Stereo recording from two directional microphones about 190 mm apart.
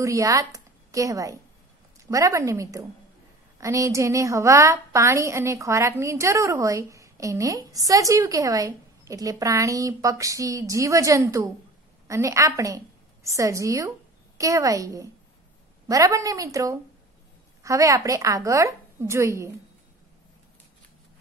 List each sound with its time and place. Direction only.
0.0 s a woman's voice: 15° right (ahead or behind)